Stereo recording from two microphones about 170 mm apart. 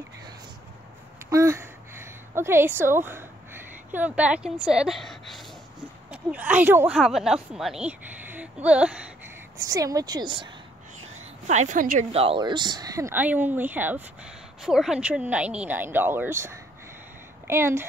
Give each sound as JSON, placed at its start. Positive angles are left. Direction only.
{"t": 1.3, "sound": "a sound", "side_deg": -15}
{"t": 6.0, "sound": "speech", "side_deg": -10}
{"t": 9.7, "sound": "speech", "side_deg": -20}
{"t": 11.1, "sound": "a woman's voice", "side_deg": -45}
{"t": 12.1, "sound": "speech", "side_deg": -35}